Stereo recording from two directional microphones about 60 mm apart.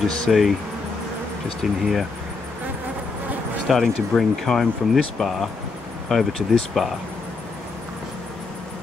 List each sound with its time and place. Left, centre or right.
0.0 s speech: centre
1.6 s speech: centre
3.7 s speech: centre